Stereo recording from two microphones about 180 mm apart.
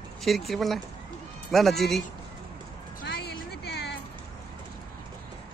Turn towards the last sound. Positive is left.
turn(degrees=70)  # may be behind; listen again after turning